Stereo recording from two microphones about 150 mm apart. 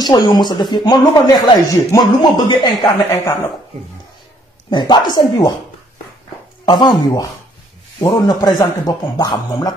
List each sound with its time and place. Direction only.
0.0 s speech: 30° left (ahead or behind)
2.8 s speech: 20° left (ahead or behind)
4.6 s speech: 30° left (ahead or behind)
6.7 s speech: 30° left (ahead or behind)